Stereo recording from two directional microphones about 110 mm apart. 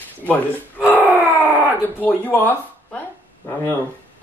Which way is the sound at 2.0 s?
15° left (ahead or behind).